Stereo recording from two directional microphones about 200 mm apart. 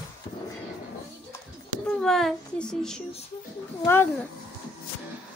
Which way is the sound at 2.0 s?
Centre (ahead or behind).